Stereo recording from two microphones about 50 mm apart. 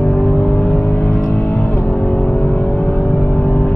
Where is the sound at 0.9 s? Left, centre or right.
Left.